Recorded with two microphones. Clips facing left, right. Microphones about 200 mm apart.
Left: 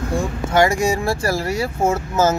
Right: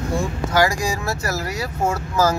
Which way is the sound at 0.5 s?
25° left (ahead or behind).